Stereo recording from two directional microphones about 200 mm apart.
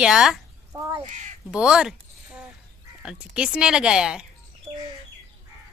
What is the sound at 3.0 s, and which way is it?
A woman's voice, 5° right (ahead or behind).